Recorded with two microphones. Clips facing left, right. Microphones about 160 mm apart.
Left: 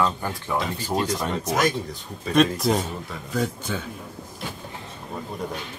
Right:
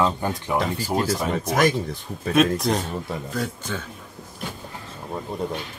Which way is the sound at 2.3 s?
Centre (ahead or behind).